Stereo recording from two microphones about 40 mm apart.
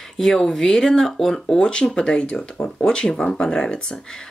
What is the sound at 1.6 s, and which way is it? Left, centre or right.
Speech, left.